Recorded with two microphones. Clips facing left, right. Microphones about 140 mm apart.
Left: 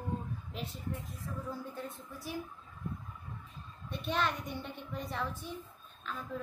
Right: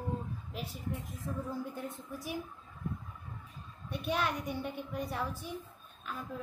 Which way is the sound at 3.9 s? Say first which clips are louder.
Even; 10° right (ahead or behind).